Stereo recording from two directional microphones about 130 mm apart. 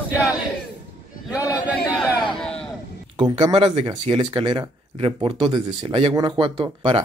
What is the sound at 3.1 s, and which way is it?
Speech, 35° right (ahead or behind).